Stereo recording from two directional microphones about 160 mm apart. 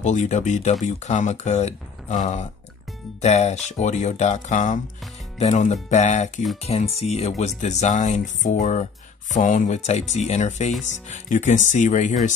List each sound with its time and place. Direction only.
0.0 s speech: 50° left (ahead or behind)